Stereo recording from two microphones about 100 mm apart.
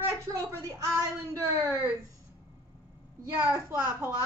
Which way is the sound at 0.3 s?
30° right (ahead or behind).